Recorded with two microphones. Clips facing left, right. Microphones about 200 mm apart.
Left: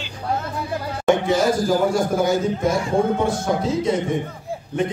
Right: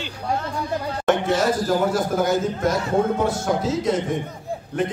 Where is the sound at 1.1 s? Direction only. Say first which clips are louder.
Left 2 dB; centre (ahead or behind).